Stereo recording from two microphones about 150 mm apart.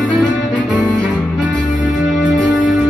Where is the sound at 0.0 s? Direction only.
5° left (ahead or behind).